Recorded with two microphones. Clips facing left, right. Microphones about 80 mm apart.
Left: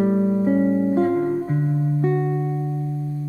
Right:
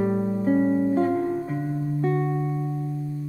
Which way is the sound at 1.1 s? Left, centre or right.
Left.